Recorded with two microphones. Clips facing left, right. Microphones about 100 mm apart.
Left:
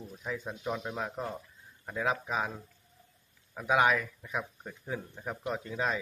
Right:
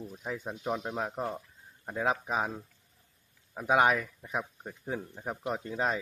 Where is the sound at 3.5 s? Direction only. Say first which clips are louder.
Right 1 dB; 35° right (ahead or behind).